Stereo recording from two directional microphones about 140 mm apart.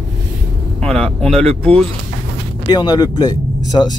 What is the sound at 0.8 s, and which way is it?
Speech, 5° left (ahead or behind).